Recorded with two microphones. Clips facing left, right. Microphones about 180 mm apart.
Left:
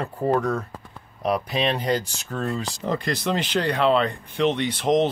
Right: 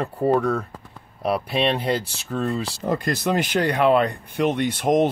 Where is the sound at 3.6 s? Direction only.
10° right (ahead or behind).